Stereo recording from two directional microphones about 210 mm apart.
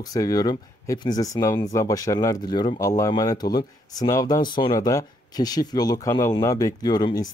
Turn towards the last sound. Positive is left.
turn(degrees=20)  # may be behind; listen again after turning